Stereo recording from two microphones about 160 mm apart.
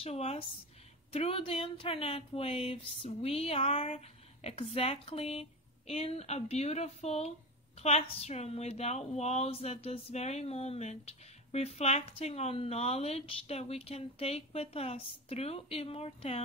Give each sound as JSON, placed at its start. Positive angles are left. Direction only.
{"t": 0.0, "sound": "speech", "side_deg": 40}